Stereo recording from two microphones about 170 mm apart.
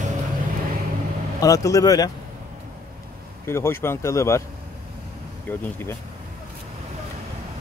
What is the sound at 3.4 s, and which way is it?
Speech, 15° left (ahead or behind).